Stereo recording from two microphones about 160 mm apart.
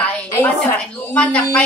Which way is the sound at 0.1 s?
15° left (ahead or behind).